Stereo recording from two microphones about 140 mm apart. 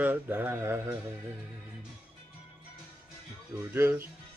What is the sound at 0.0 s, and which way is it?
Music, 10° right (ahead or behind).